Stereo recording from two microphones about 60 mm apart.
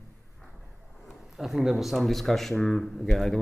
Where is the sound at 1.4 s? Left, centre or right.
Centre.